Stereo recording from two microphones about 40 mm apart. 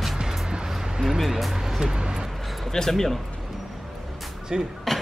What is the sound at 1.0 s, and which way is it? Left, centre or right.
Speech, centre.